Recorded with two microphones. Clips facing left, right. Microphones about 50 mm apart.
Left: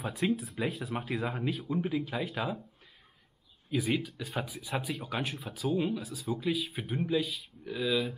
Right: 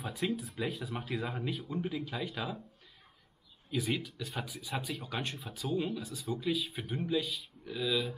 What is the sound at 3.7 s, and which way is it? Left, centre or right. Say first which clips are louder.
Speech: left 4 dB; centre.